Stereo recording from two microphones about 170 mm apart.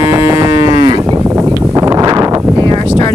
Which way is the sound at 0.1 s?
20° right (ahead or behind).